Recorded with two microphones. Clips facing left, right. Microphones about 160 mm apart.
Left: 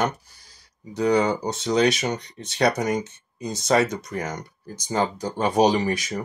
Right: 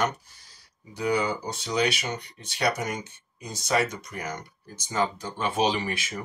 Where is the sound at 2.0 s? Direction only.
40° left (ahead or behind).